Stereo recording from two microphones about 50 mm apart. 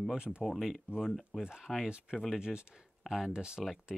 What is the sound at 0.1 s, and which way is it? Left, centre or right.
Speech, centre.